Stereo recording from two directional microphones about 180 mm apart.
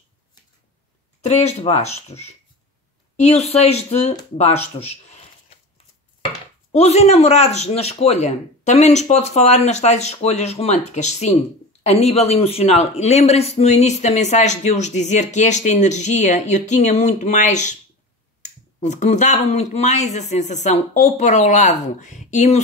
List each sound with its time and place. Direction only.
1.2 s a man's voice: 35° left (ahead or behind)
4.4 s a sound: 35° left (ahead or behind)
6.7 s a man's voice: 35° left (ahead or behind)